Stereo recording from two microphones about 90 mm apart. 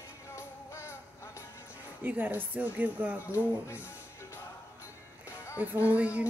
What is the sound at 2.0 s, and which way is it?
Speech, 20° right (ahead or behind).